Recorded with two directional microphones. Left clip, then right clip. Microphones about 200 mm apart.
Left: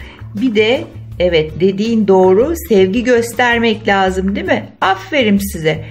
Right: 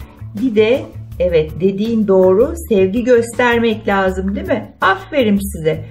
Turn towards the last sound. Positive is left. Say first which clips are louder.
# left 2 dB
turn(degrees=40)  # may be behind; listen again after turning